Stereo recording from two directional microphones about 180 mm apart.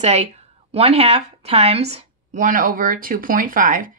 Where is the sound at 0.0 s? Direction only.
35° right (ahead or behind).